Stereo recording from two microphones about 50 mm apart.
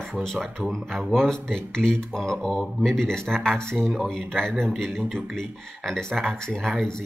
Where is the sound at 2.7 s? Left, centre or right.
Centre.